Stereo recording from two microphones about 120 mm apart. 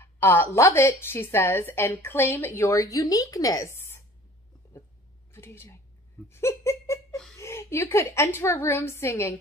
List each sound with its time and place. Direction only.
0.0 s a woman's voice: 20° left (ahead or behind)
5.3 s a sound: 20° left (ahead or behind)
6.2 s giggle: 20° left (ahead or behind)
7.3 s a woman's voice: 20° left (ahead or behind)